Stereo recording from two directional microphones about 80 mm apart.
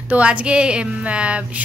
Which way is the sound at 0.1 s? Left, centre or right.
Centre.